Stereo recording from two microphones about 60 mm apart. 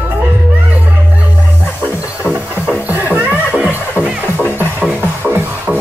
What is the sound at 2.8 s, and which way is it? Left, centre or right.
Music, right.